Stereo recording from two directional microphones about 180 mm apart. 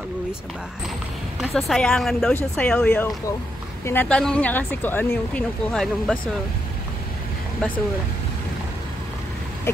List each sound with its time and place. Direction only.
1.4 s speech: centre (ahead or behind)